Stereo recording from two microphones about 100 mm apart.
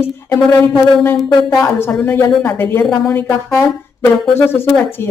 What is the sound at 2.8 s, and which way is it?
Speech, 5° left (ahead or behind).